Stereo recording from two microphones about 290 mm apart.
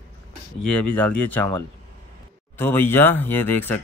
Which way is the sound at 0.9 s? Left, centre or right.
Centre.